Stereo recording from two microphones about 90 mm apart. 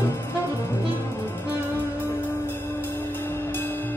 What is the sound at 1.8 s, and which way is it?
Music, 25° left (ahead or behind).